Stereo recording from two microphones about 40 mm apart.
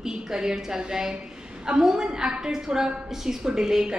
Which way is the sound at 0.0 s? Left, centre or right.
Centre.